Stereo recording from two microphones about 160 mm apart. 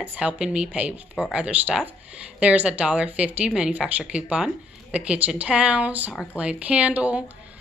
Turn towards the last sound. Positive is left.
turn(degrees=-10)  # may be behind; listen again after turning